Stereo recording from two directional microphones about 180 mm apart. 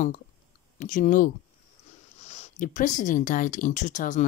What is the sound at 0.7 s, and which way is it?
Speech, 45° left (ahead or behind).